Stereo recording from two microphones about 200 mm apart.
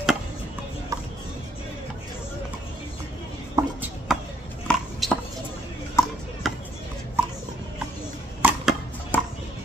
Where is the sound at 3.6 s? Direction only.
20° right (ahead or behind).